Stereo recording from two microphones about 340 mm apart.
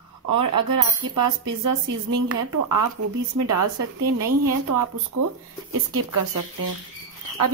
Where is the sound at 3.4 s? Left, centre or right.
Right.